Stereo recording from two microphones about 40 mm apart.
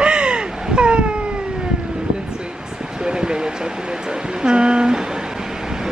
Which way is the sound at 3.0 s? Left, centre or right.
Centre.